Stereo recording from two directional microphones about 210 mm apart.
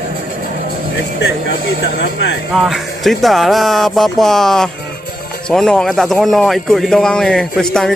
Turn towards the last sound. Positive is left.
turn(degrees=0)  # may be behind; listen again after turning